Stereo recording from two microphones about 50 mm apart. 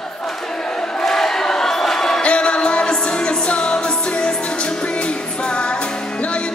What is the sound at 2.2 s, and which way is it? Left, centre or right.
Music, left.